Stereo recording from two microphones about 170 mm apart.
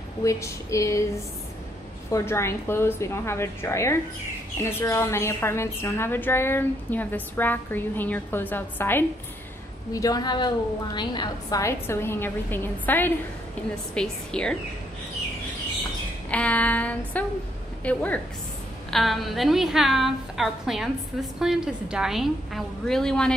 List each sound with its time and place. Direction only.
0.2 s a woman's voice: 20° left (ahead or behind)
2.0 s a woman's voice: 15° left (ahead or behind)
16.3 s a woman's voice: 10° left (ahead or behind)